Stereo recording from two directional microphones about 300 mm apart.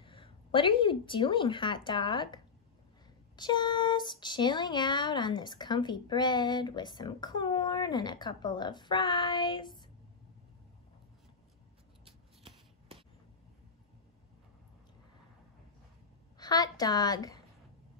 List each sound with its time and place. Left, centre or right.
0.0 s speech: centre
12.0 s shuffling cards: centre
16.3 s a woman's voice: centre